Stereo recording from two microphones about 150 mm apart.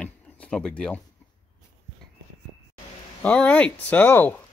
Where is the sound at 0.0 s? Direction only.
5° left (ahead or behind).